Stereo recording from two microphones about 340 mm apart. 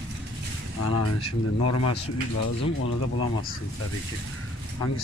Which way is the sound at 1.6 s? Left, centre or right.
Left.